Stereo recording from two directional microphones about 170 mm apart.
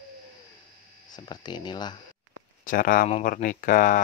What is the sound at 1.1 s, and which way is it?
Speech, 25° left (ahead or behind).